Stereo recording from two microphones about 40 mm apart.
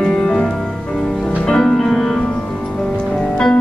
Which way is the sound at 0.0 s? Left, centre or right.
Centre.